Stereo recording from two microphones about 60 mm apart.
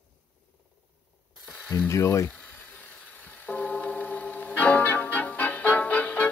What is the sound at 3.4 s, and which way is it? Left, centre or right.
Music, left.